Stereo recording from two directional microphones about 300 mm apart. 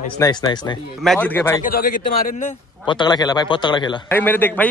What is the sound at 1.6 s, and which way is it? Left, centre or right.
Speech, left.